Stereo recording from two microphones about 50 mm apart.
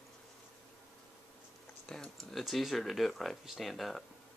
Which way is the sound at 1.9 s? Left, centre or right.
Centre.